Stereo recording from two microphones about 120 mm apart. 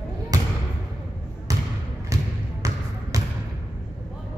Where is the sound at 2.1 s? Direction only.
25° right (ahead or behind).